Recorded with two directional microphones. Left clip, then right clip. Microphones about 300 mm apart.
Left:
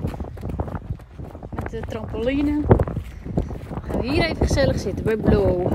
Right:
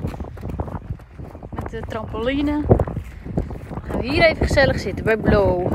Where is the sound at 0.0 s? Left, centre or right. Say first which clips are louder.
Even; centre.